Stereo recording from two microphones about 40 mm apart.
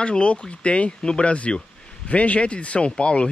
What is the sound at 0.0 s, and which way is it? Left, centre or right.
A man's voice, left.